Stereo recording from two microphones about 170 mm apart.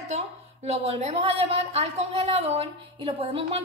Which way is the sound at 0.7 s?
40° right (ahead or behind).